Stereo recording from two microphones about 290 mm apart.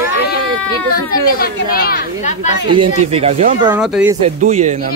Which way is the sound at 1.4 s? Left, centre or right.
Left.